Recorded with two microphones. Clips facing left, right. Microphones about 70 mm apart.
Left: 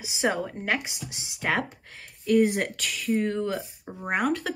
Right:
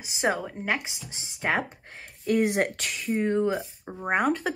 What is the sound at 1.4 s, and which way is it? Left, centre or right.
Speech, centre.